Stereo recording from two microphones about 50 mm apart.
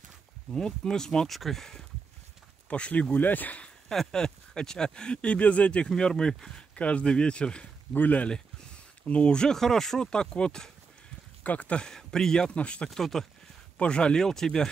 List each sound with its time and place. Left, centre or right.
0.5 s speech: centre
2.7 s speech: left
4.1 s speech: centre
5.9 s speech: centre
6.7 s speech: left
7.9 s speech: left
9.0 s speech: left
11.4 s speech: left
11.8 s speech: centre
12.9 s speech: centre
13.7 s speech: centre